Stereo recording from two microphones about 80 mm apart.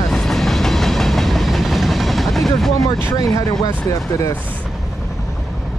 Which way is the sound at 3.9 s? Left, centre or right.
Left.